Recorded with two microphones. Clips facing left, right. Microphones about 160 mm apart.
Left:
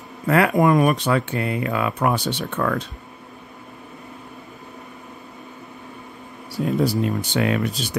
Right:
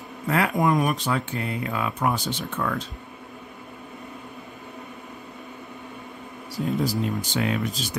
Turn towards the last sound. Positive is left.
turn(degrees=65)  # may be behind; listen again after turning